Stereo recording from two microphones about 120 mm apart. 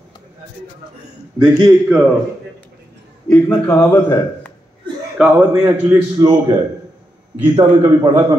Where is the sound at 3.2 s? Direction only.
15° left (ahead or behind).